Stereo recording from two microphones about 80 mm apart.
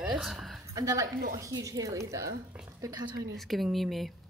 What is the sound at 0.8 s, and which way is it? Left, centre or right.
Speech, right.